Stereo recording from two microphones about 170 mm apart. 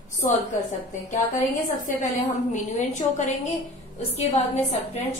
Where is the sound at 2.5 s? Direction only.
45° left (ahead or behind).